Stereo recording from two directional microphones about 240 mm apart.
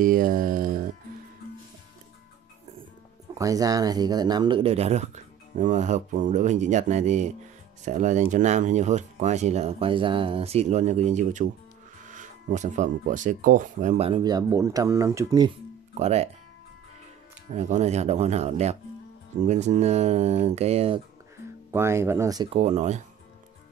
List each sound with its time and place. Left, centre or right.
0.0 s music: right
3.3 s speech: centre
16.0 s speech: right
17.5 s speech: right
21.7 s speech: centre; by 23.0 s right